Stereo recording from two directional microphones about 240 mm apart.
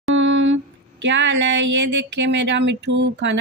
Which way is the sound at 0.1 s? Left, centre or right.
Right.